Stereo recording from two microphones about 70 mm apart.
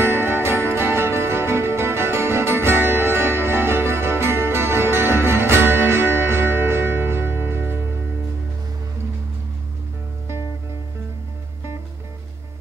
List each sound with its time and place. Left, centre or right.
0.0 s music: right